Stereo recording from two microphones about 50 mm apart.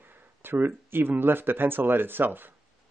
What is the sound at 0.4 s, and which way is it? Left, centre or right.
Speech, right.